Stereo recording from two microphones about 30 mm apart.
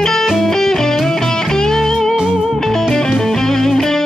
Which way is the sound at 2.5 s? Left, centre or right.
Centre.